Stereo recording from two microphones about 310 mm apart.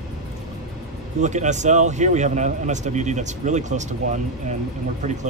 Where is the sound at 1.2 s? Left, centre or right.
Right.